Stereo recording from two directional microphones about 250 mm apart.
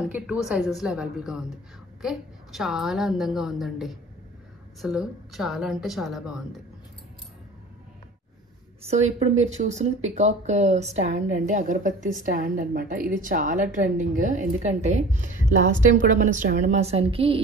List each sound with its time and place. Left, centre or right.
0.1 s a woman's voice: centre
8.8 s a woman's voice: right